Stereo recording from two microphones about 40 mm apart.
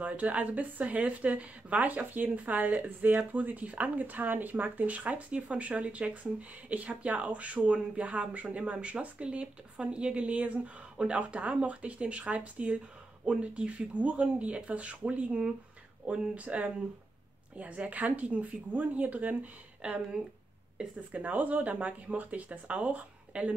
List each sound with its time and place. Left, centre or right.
0.0 s speech: right
21.2 s speech: right